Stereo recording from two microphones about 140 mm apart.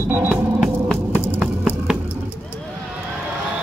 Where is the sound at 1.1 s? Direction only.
15° right (ahead or behind).